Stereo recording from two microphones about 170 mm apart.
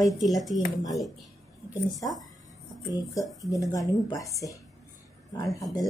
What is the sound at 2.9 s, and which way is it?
Speech, 20° left (ahead or behind).